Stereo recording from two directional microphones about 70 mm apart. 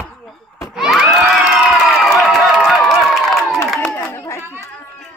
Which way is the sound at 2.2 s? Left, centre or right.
Centre.